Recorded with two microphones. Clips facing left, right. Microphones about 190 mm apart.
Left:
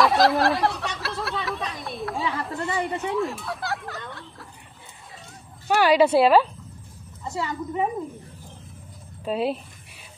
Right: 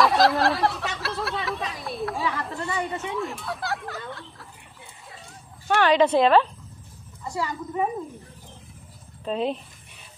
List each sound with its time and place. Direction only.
0.0 s snicker: centre (ahead or behind)
2.5 s a sound: 20° left (ahead or behind)
3.1 s a sound: centre (ahead or behind)
5.7 s a woman's voice: 10° left (ahead or behind)
7.2 s a woman's voice: 20° left (ahead or behind)
9.2 s a woman's voice: 5° left (ahead or behind)